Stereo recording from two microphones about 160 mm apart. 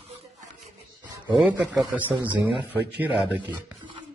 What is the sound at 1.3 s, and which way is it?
A man's voice, centre (ahead or behind).